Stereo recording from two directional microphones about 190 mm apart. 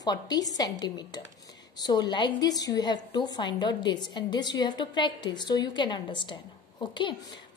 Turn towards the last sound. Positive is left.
turn(degrees=25)  # may be behind; listen again after turning